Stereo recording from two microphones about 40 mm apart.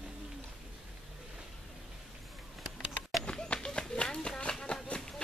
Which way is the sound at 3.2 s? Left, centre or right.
Left.